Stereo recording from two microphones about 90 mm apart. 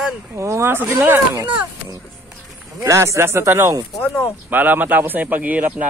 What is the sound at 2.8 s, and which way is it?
Speech, 35° right (ahead or behind).